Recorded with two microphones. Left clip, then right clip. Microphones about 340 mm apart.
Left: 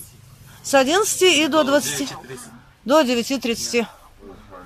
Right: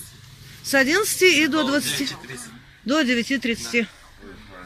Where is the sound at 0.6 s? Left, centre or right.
Centre.